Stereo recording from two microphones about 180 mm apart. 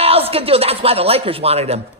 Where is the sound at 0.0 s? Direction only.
35° right (ahead or behind).